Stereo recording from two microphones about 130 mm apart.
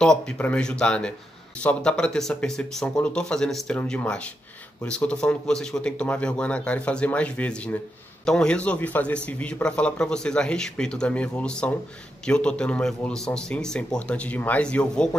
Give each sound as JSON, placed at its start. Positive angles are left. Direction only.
{"t": 0.0, "sound": "a man's voice", "side_deg": 5}